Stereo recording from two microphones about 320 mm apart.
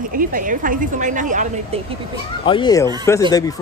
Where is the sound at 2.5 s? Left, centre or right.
Centre.